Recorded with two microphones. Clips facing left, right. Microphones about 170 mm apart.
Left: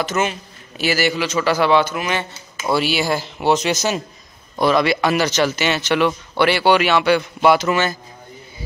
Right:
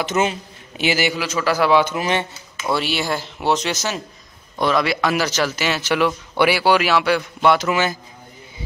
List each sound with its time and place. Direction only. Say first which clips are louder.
0.0 s a man's voice: right 1 dB; 20° right (ahead or behind)
1.1 s speech: left 2 dB; 5° right (ahead or behind)
1.9 s speech: right 2 dB; 25° right (ahead or behind)
2.7 s speech: left 3 dB; 5° left (ahead or behind)
3.7 s a man's voice: left 4 dB; 15° left (ahead or behind)
4.6 s speech: left 3 dB; centre (ahead or behind)
7.7 s a man's voice: left 1 dB; 10° right (ahead or behind)